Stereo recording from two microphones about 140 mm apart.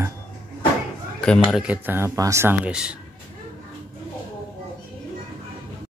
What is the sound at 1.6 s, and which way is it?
Speech, 10° right (ahead or behind).